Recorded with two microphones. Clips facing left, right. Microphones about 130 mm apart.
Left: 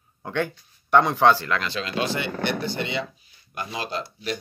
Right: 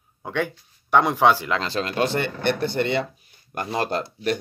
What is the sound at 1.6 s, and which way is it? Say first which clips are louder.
Speech: right 3 dB; 45° right (ahead or behind).